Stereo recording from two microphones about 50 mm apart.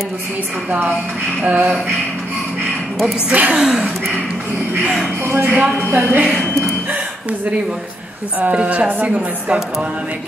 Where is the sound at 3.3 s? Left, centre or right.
Right.